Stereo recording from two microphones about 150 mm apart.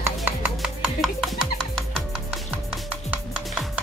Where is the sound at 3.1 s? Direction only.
5° right (ahead or behind).